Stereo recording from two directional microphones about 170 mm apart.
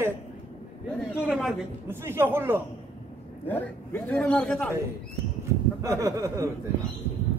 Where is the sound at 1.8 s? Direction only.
15° right (ahead or behind).